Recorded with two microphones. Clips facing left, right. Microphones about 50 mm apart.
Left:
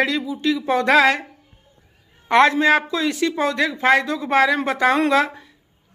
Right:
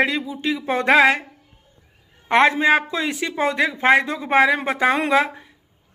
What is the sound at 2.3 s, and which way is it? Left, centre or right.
A woman's voice, right.